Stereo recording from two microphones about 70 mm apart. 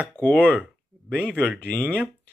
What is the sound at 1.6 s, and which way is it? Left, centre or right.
Speech, left.